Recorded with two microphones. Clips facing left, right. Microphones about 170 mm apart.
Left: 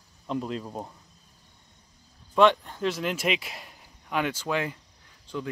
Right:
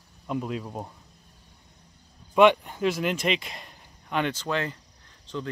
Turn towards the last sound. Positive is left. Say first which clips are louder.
# even
turn(degrees=10)  # may be behind; listen again after turning